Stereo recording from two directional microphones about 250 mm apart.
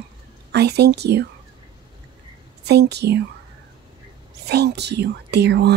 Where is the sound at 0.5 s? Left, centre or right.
Right.